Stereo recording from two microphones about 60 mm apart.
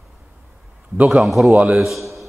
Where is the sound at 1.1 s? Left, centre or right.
Centre.